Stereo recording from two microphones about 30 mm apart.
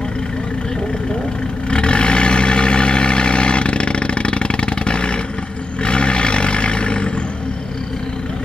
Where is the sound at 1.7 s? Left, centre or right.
Left.